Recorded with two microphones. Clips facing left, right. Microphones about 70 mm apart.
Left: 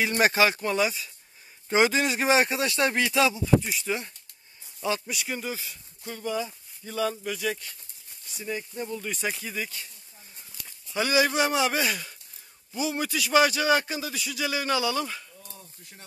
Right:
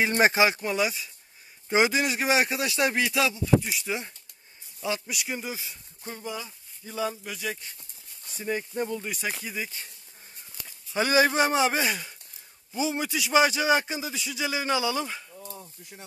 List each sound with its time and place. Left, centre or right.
0.0 s speech: right
0.3 s a man's voice: centre
5.7 s speech: right
6.3 s speech: centre
8.3 s speech: right
9.1 s speech: centre
11.0 s a man's voice: right